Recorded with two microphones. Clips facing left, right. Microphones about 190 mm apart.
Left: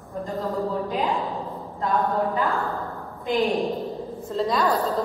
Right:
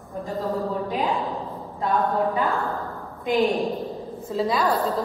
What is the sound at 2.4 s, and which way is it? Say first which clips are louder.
A woman's voice: even; centre (ahead or behind).